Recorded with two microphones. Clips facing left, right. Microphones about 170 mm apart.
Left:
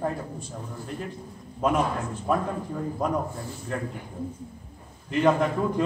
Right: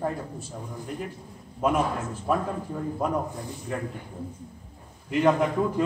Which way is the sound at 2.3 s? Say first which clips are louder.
Even; centre (ahead or behind).